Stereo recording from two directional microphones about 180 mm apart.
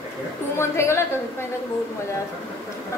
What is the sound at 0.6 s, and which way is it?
Speech, 15° left (ahead or behind).